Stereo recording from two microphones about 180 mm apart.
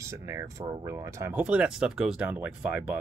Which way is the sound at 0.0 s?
15° right (ahead or behind).